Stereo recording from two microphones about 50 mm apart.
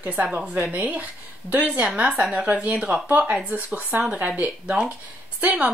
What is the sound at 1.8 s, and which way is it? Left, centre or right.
A woman's voice, centre.